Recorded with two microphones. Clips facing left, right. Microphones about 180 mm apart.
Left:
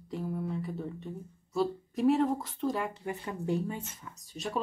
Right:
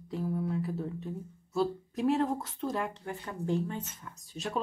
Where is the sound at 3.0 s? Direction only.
15° left (ahead or behind); by 4.6 s centre (ahead or behind).